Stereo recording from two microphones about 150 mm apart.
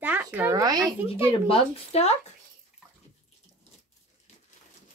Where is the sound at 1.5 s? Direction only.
40° left (ahead or behind).